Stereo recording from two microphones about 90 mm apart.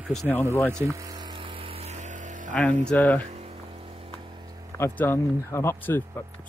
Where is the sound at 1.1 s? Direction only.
60° right (ahead or behind); by 1.8 s 80° right.